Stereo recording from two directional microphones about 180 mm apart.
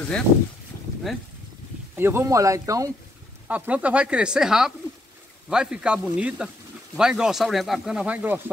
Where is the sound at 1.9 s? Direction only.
15° right (ahead or behind).